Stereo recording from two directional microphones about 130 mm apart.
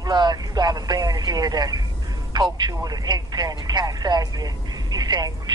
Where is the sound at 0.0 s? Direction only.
30° right (ahead or behind).